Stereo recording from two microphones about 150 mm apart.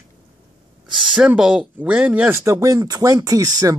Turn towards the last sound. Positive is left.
turn(degrees=-25)  # may be behind; listen again after turning